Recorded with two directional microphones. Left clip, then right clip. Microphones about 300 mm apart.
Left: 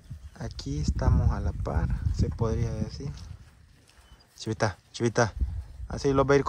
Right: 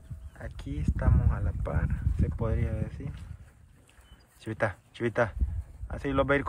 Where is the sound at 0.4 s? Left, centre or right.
Centre.